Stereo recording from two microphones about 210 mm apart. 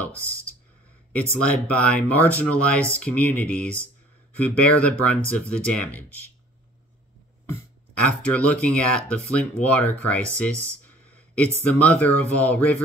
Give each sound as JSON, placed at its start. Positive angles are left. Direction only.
{"t": 1.1, "sound": "speech", "side_deg": 5}
{"t": 8.0, "sound": "speech", "side_deg": 5}